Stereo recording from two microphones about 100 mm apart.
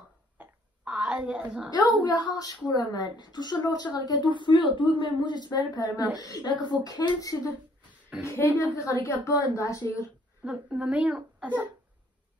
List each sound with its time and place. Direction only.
0.4 s a sound: 10° right (ahead or behind)
1.7 s a woman's voice: 40° left (ahead or behind)
8.2 s a woman's voice: 25° left (ahead or behind)
10.4 s a woman's voice: 10° right (ahead or behind)